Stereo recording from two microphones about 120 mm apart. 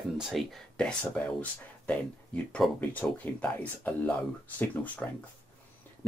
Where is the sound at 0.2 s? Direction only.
Centre (ahead or behind).